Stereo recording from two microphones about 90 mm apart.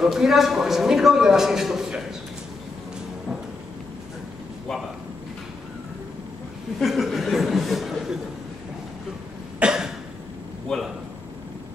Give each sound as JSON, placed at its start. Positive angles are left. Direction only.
{"t": 0.0, "sound": "a man's voice", "side_deg": -5}
{"t": 6.8, "sound": "speech", "side_deg": 0}
{"t": 9.6, "sound": "cough", "side_deg": -5}
{"t": 10.7, "sound": "a sound", "side_deg": 5}